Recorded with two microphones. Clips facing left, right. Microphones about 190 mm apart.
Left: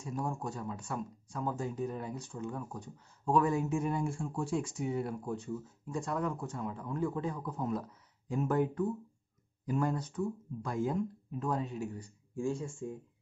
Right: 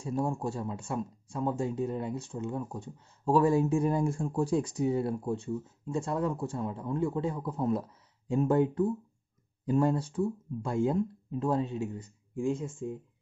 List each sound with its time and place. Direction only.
0.0 s speech: 30° right (ahead or behind)